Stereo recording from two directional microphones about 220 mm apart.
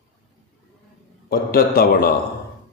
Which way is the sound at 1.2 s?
45° left (ahead or behind).